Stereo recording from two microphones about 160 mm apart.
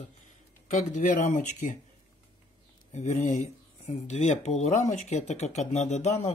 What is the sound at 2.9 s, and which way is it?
Speech, 45° left (ahead or behind).